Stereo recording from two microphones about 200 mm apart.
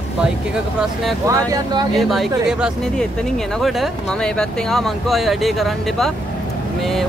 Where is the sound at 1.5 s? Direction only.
20° right (ahead or behind).